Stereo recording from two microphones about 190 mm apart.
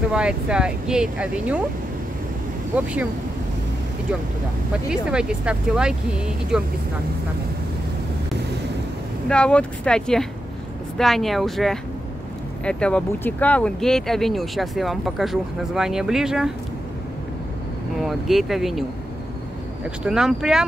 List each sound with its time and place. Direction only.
0.1 s speech: 5° right (ahead or behind)
2.7 s speech: 5° right (ahead or behind)
4.8 s speech: 5° right (ahead or behind)
9.3 s speech: 5° left (ahead or behind)
17.9 s speech: centre (ahead or behind)
20.1 s speech: 5° right (ahead or behind)